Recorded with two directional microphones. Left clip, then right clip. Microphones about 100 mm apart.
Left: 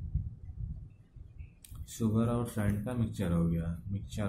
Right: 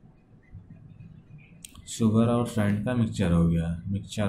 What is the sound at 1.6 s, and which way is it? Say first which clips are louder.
Speech: right 8 dB; 20° left (ahead or behind).